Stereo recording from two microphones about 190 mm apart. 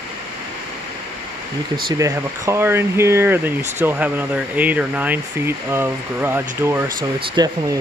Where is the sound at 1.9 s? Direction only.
15° right (ahead or behind).